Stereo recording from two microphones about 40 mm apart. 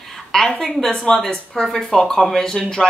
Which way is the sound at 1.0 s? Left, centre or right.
Centre.